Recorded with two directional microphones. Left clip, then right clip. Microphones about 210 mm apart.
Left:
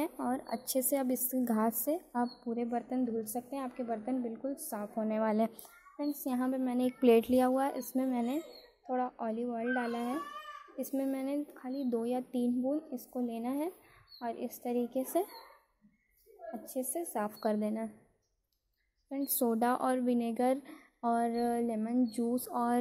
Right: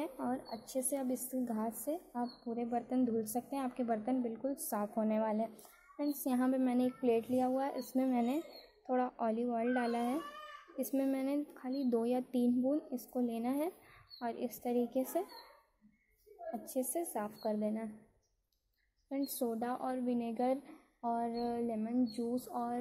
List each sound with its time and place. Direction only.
0.0 s a sound: 10° left (ahead or behind)
0.5 s a woman's voice: 15° left (ahead or behind); by 5.2 s centre (ahead or behind)
5.2 s speech: 20° left (ahead or behind)
5.9 s a woman's voice: centre (ahead or behind)
6.9 s speech: 25° left (ahead or behind)
7.9 s a woman's voice: centre (ahead or behind)
16.5 s a woman's voice: centre (ahead or behind)
17.3 s a woman's voice: 20° left (ahead or behind)
19.3 s a woman's voice: 20° left (ahead or behind)